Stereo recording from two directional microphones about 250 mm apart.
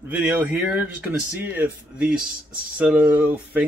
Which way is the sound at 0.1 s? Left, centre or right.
Centre.